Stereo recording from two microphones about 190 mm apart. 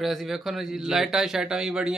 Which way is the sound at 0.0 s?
Centre (ahead or behind).